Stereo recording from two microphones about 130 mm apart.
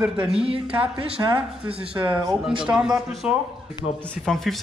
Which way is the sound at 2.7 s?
5° right (ahead or behind).